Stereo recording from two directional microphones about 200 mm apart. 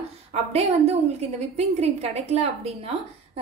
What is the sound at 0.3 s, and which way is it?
A woman's voice, 30° right (ahead or behind).